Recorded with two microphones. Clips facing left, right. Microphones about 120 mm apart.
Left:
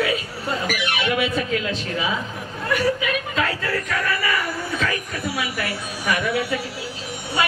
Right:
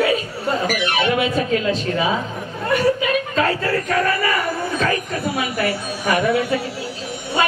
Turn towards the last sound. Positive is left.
turn(degrees=-35)  # may be behind; listen again after turning